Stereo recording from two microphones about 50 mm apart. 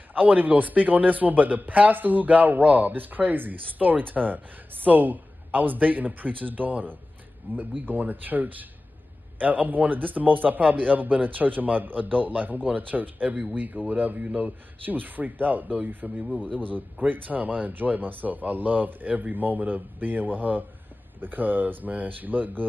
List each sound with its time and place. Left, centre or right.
0.1 s a man's voice: right
16.3 s a man's voice: left
17.0 s a man's voice: right